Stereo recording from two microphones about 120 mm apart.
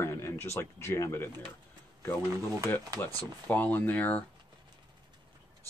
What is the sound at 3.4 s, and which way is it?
Speech, 15° left (ahead or behind).